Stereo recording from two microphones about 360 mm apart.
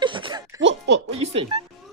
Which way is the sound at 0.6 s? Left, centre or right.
Right.